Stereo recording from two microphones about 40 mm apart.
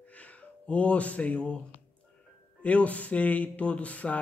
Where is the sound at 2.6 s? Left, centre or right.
Left.